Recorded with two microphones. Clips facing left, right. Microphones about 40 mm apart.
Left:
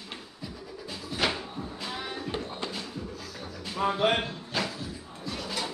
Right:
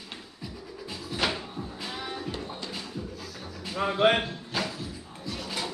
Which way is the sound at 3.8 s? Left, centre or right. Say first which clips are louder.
Left 1 dB; centre.